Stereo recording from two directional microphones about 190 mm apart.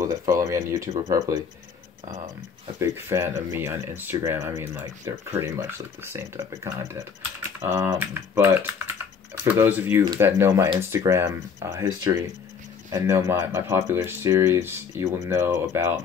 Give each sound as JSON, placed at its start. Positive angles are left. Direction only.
{"t": 0.3, "sound": "speech", "side_deg": -15}
{"t": 2.8, "sound": "speech", "side_deg": -15}